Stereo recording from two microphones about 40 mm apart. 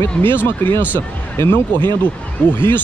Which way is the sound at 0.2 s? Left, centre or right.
Left.